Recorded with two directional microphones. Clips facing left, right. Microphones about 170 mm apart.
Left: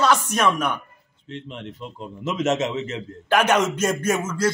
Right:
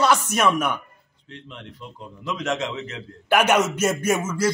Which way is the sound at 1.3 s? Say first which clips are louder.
Left 6 dB; 20° left (ahead or behind).